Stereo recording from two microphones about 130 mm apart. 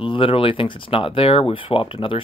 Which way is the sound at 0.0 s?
40° left (ahead or behind).